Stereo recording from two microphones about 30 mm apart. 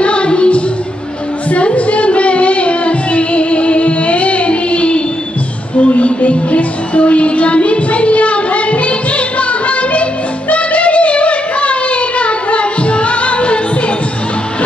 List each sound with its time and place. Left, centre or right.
0.0 s music: left
10.5 s child singing: left